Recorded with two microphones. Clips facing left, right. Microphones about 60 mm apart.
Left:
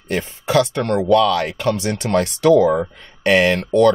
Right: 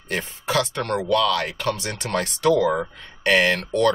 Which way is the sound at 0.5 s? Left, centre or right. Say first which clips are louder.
Left 6 dB; left.